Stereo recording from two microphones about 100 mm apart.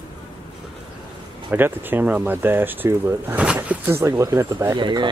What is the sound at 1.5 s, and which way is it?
Speech, 20° right (ahead or behind).